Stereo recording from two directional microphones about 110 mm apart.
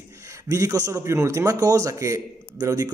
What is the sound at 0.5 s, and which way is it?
A man's voice, 30° right (ahead or behind).